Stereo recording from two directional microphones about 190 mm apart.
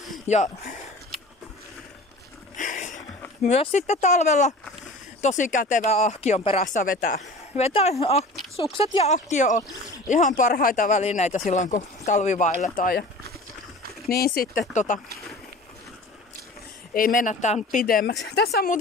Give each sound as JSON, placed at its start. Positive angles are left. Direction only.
{"t": 0.3, "sound": "speech", "side_deg": 40}
{"t": 2.5, "sound": "a sound", "side_deg": 40}
{"t": 3.4, "sound": "speech", "side_deg": 35}
{"t": 14.0, "sound": "speech", "side_deg": 50}
{"t": 14.7, "sound": "speech", "side_deg": 40}
{"t": 16.9, "sound": "speech", "side_deg": 45}